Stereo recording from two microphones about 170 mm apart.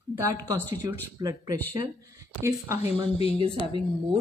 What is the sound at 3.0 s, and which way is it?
Speech, 35° left (ahead or behind).